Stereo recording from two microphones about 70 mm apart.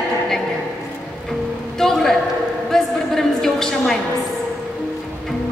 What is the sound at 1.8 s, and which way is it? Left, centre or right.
Speech, centre.